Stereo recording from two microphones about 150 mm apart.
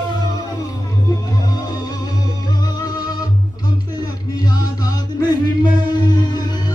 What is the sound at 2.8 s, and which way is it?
Music, 25° left (ahead or behind).